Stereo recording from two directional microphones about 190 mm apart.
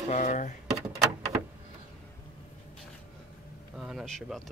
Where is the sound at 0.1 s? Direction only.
40° left (ahead or behind).